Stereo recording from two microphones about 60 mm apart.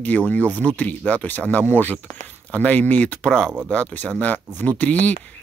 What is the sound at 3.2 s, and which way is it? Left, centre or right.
Speech, centre.